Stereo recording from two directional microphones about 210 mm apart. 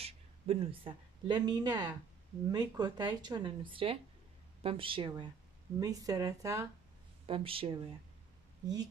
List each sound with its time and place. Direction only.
0.0 s a woman's voice: 25° right (ahead or behind)
7.2 s speech: 25° right (ahead or behind)